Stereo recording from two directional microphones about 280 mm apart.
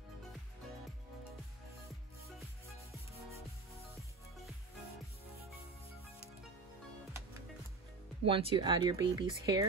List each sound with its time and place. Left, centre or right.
8.3 s speech: centre